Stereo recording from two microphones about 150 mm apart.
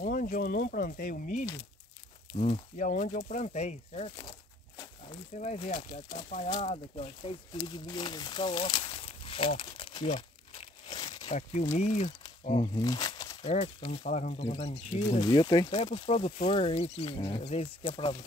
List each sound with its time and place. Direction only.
0.0 s speech: 70° left (ahead or behind)
2.3 s speech: 45° left (ahead or behind)
2.8 s speech: 60° left (ahead or behind); by 5.2 s 35° left (ahead or behind)
5.4 s speech: 50° left (ahead or behind)
6.5 s speech: 40° left (ahead or behind)
11.2 s speech: 50° left (ahead or behind)
12.7 s crumpling: 25° left (ahead or behind)
13.4 s speech: 45° left (ahead or behind)
15.1 s speech: 30° left (ahead or behind)
15.7 s speech: 45° left (ahead or behind)